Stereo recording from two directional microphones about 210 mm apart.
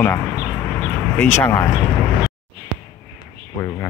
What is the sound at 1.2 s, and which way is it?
Speech, 10° left (ahead or behind).